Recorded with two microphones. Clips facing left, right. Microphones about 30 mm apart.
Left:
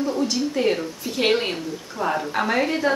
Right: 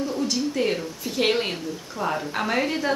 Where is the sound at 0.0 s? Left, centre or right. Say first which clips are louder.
Left 3 dB; centre.